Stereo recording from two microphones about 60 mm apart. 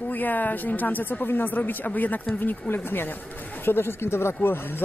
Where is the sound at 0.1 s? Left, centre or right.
Left.